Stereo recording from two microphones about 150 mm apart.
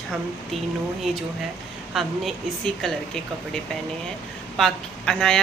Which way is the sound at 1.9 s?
Centre (ahead or behind).